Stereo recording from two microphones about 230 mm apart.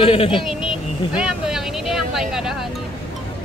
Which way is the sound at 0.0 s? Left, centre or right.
Left.